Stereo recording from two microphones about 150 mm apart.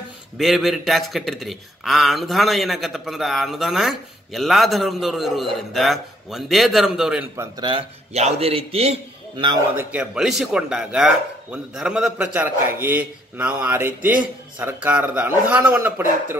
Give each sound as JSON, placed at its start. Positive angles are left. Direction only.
{"t": 0.4, "sound": "a man's voice", "side_deg": 0}
{"t": 7.6, "sound": "a man's voice", "side_deg": -40}
{"t": 9.9, "sound": "speech", "side_deg": -5}